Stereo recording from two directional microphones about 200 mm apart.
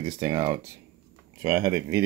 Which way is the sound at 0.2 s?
20° right (ahead or behind).